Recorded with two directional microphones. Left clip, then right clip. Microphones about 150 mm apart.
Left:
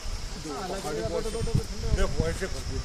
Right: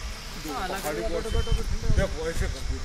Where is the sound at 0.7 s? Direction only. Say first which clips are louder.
Even; 5° left (ahead or behind).